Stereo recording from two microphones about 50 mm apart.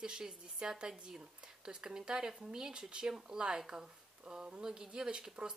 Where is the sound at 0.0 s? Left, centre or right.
Centre.